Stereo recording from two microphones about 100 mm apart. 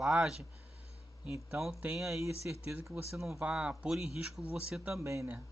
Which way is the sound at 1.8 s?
5° right (ahead or behind).